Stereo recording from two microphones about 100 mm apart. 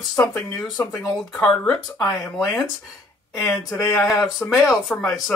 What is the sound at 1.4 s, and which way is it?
Speech, 10° left (ahead or behind).